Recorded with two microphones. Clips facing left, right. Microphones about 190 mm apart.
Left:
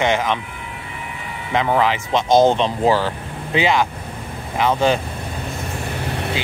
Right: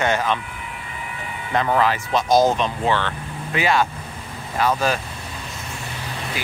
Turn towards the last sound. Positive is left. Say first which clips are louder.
# left 6 dB
turn(degrees=65)  # may be behind; listen again after turning